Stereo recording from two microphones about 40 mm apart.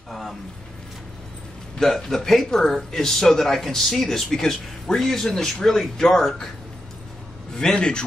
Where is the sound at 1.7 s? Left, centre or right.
Centre.